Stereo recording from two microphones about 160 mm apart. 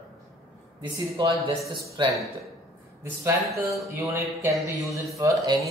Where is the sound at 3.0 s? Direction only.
15° right (ahead or behind).